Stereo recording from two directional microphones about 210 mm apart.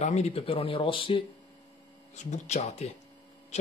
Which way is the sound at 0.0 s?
30° left (ahead or behind).